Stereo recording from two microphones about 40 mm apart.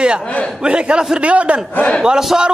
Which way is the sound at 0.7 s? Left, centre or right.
Right.